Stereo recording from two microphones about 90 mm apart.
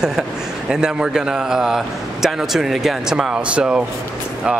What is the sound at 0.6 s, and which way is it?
A man's voice, 10° right (ahead or behind).